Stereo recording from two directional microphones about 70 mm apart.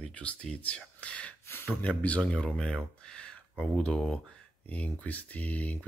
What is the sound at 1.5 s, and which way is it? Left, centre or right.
Speech, left.